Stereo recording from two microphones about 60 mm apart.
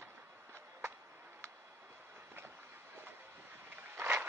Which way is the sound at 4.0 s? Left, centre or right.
Right.